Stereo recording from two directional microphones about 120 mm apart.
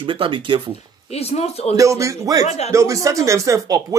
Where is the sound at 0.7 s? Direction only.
60° left (ahead or behind).